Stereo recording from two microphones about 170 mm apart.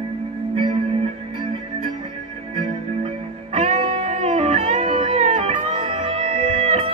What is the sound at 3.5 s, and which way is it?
Music, 40° right (ahead or behind).